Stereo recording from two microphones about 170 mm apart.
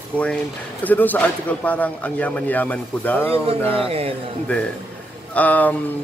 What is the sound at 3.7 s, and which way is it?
Speech, 35° right (ahead or behind).